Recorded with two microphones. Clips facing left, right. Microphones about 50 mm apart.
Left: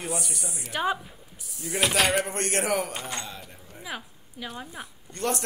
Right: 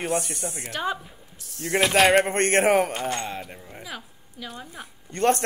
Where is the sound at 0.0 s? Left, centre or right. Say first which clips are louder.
Right 6 dB; right.